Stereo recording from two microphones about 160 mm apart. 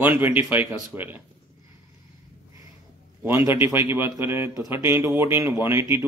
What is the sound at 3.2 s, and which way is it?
Speech, 15° right (ahead or behind).